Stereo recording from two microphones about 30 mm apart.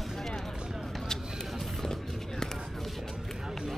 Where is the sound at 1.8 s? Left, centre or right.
Centre.